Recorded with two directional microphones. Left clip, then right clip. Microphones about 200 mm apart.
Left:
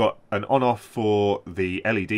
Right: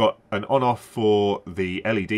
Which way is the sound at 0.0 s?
50° left (ahead or behind).